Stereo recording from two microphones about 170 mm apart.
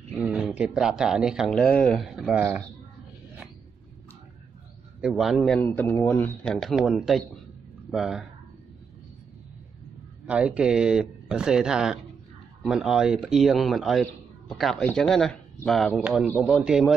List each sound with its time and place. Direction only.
0.2 s speech: 5° right (ahead or behind)
5.0 s speech: 5° right (ahead or behind)
5.6 s speech: 10° left (ahead or behind); by 8.3 s 5° right (ahead or behind)
10.2 s speech: 5° right (ahead or behind)
16.0 s a man's voice: 5° right (ahead or behind)